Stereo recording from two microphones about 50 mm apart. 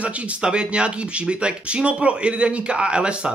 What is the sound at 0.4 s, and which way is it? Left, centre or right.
A man's voice, centre.